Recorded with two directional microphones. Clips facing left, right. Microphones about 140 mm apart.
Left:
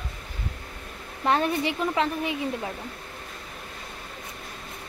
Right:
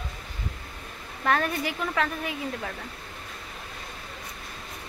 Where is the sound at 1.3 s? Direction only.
25° left (ahead or behind).